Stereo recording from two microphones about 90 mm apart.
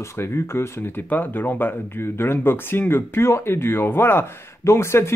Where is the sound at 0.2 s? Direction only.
25° left (ahead or behind).